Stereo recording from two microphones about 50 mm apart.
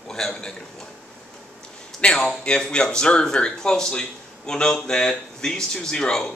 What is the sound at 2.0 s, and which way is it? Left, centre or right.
Speech, centre.